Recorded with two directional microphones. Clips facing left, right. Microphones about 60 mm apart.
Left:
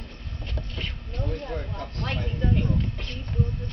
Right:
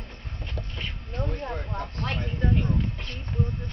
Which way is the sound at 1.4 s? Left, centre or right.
Right.